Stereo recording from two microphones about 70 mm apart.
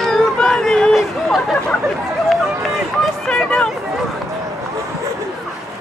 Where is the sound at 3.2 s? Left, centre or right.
Centre.